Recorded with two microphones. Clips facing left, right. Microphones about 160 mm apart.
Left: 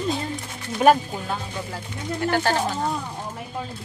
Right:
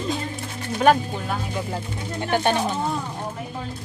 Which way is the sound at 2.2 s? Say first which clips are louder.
Right 1 dB; 20° right (ahead or behind).